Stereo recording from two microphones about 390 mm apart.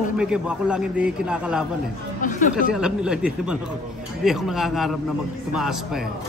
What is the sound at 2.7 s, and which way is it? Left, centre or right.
A man's voice, centre.